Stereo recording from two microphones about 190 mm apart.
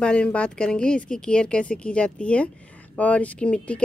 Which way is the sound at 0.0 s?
5° left (ahead or behind).